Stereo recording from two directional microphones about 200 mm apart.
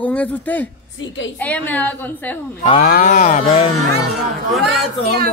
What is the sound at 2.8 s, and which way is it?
Speech, 45° left (ahead or behind).